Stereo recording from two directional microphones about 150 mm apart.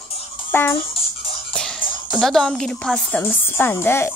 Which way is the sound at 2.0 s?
Centre (ahead or behind).